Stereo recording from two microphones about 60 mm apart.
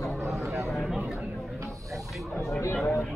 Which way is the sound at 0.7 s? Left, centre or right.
Centre.